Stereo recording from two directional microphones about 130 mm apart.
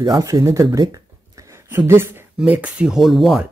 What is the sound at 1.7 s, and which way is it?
Speech, 20° right (ahead or behind).